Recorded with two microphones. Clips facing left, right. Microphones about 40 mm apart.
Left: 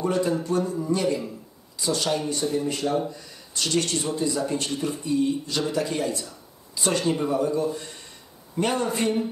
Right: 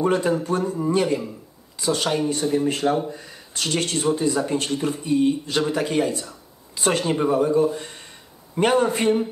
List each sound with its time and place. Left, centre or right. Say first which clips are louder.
0.0 s speech: right 3 dB; right